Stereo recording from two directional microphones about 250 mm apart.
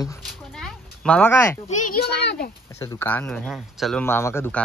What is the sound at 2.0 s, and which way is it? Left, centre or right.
Speech, left.